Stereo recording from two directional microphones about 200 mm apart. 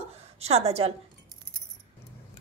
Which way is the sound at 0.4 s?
30° right (ahead or behind).